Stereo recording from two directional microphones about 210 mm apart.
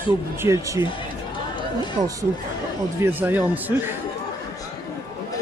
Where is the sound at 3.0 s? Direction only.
10° right (ahead or behind).